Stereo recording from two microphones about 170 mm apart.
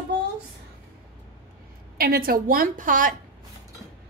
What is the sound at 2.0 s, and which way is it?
Speech, 60° right (ahead or behind).